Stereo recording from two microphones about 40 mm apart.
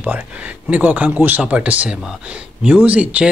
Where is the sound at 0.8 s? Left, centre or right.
Right.